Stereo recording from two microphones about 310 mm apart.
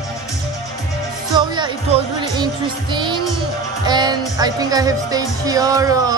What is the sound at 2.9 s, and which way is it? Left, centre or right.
Speech, centre.